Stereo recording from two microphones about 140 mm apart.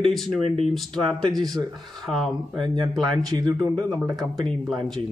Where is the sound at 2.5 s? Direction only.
35° right (ahead or behind).